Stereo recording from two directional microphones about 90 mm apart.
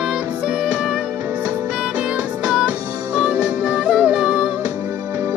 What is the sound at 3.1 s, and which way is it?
Music, 15° right (ahead or behind).